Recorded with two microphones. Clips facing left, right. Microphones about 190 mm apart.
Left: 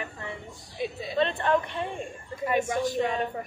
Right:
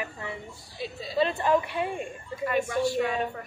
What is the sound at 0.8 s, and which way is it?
Speech, 20° left (ahead or behind).